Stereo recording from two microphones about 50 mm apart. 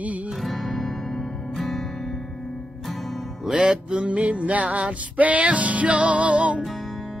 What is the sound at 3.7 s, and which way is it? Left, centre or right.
Music, right.